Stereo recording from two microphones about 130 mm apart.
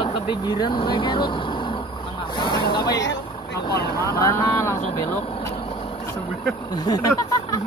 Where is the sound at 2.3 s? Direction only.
35° left (ahead or behind).